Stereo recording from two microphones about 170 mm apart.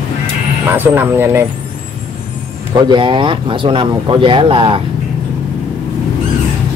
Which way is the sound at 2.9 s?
30° right (ahead or behind).